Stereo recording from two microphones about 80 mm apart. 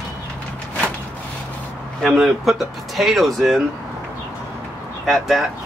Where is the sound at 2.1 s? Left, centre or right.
Centre.